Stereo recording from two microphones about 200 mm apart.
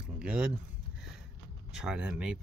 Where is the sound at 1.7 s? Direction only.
5° right (ahead or behind).